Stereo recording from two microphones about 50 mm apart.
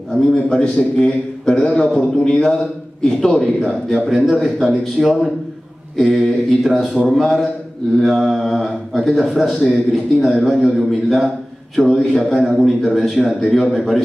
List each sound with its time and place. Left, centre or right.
0.1 s a man's voice: centre
12.4 s a man's voice: centre